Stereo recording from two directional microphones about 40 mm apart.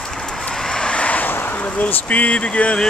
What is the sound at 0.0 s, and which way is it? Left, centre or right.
Vehicle, centre.